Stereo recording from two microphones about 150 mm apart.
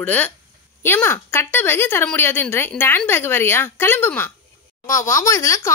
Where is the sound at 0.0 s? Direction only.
10° left (ahead or behind).